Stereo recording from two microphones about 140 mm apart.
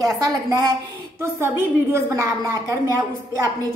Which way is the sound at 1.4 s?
20° right (ahead or behind).